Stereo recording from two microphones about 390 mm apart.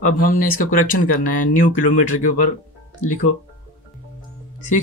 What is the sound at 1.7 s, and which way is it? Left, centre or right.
Speech, left.